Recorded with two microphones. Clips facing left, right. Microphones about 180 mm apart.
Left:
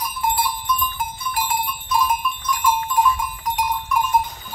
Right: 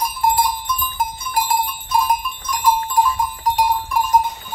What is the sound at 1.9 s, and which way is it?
Cowbell, 40° right (ahead or behind).